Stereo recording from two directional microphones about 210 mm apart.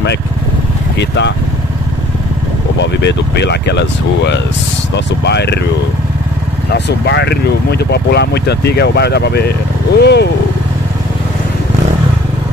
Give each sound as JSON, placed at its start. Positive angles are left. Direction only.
{"t": 0.9, "sound": "speech", "side_deg": 55}
{"t": 2.8, "sound": "speech", "side_deg": 55}
{"t": 6.7, "sound": "speech", "side_deg": 50}